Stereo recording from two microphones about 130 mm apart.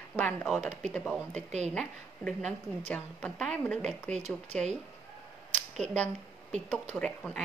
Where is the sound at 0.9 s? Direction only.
5° left (ahead or behind).